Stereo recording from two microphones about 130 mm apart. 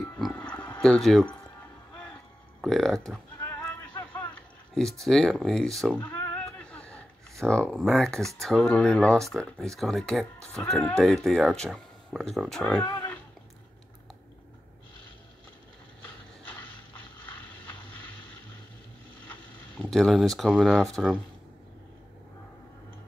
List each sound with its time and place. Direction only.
0.3 s a sound: 10° left (ahead or behind)
2.6 s speech: centre (ahead or behind)
3.3 s a sound: 20° left (ahead or behind)
4.7 s speech: 5° left (ahead or behind)
5.9 s cat: 15° left (ahead or behind)
7.7 s speech: 5° left (ahead or behind)
19.9 s speech: centre (ahead or behind)